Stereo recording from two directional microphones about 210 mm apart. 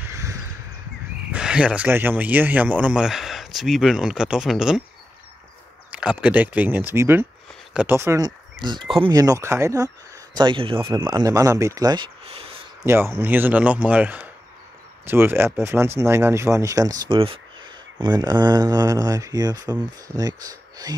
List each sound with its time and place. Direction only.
0.0 s crow: 15° right (ahead or behind)
1.3 s speech: 5° right (ahead or behind)
5.9 s a man's voice: 5° right (ahead or behind); by 12.5 s 25° right (ahead or behind)
12.8 s a man's voice: 10° right (ahead or behind)